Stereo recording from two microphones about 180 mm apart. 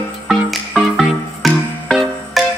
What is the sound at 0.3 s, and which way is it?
Music, centre (ahead or behind).